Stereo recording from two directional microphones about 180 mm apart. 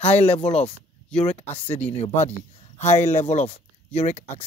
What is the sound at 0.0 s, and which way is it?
Speech, 35° left (ahead or behind).